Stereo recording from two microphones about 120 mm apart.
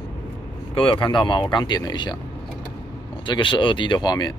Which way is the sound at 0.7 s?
45° left (ahead or behind).